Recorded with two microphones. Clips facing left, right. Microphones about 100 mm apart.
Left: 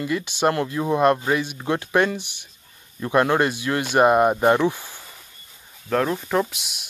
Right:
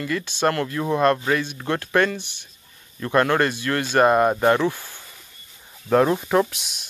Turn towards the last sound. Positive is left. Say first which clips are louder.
# right 2 dB
turn(degrees=5)  # may be behind; listen again after turning